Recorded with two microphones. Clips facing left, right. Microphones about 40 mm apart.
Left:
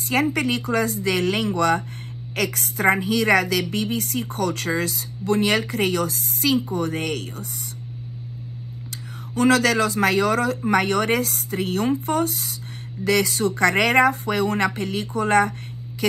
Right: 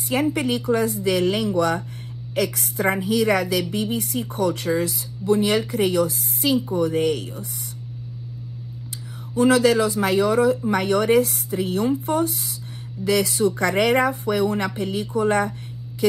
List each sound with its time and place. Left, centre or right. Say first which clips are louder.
0.1 s a woman's voice: even; left
9.3 s a woman's voice: right 1 dB; left
16.0 s a sound: right 3 dB; left